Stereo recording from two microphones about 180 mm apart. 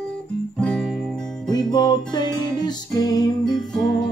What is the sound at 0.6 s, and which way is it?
Music, 5° left (ahead or behind).